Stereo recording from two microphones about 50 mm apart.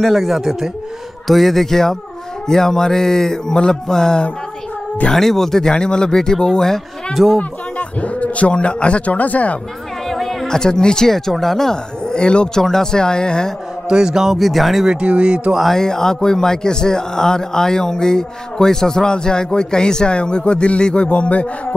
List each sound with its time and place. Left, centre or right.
0.0 s a man's voice: centre
7.2 s speech: centre
8.0 s speech: left
10.0 s a man's voice: centre
13.8 s speech: centre
14.9 s speech: right
15.7 s a man's voice: centre; by 21.7 s left